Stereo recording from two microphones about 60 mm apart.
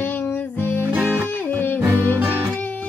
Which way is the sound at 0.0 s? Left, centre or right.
Left.